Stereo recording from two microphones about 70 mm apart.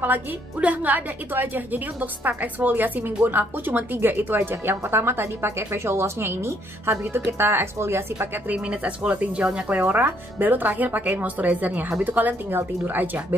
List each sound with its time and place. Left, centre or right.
0.0 s a woman's voice: right
8.5 s a woman's voice: centre
9.8 s a woman's voice: right